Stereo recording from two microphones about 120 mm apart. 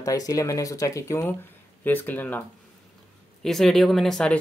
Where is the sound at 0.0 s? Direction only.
30° left (ahead or behind).